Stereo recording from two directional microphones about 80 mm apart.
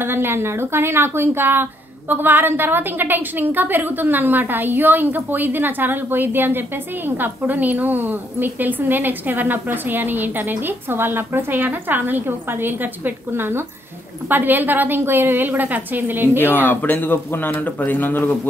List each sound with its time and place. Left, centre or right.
0.0 s a woman's voice: right
16.3 s a man's voice: left